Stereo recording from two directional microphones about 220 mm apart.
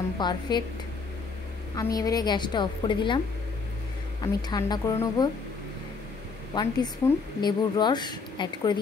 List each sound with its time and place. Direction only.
0.2 s a woman's voice: 20° left (ahead or behind)
1.8 s a woman's voice: 15° left (ahead or behind)
4.2 s a woman's voice: 20° left (ahead or behind)
6.5 s a woman's voice: 20° left (ahead or behind)